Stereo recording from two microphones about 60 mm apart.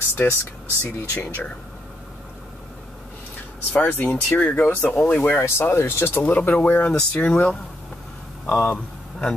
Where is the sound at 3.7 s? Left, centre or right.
Left.